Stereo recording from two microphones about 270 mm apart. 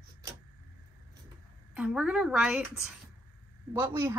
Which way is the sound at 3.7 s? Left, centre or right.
Centre.